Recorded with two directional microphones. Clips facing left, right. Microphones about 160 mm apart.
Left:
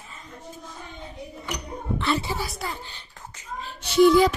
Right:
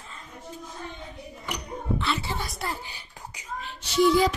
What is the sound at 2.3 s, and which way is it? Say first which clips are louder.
Speech: left 1 dB; centre (ahead or behind).